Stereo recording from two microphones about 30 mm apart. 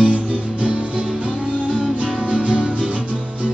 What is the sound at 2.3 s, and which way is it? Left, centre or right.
Music, right.